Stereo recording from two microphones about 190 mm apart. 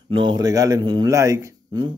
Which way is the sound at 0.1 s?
25° right (ahead or behind).